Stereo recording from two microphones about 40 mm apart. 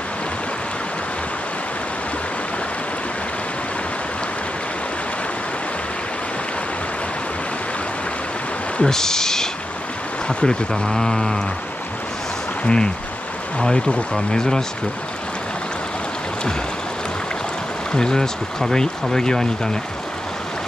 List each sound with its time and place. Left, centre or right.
8.8 s speech: centre
12.6 s speech: left
17.9 s speech: centre